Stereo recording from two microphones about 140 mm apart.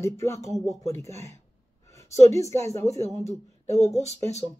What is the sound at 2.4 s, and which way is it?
Speech, 20° left (ahead or behind).